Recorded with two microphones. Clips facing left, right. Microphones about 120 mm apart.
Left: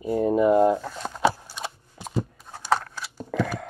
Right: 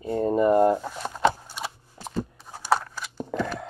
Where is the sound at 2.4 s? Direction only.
10° right (ahead or behind).